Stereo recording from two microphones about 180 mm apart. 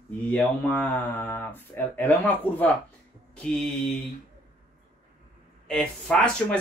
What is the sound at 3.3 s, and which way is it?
Mantra, 5° left (ahead or behind).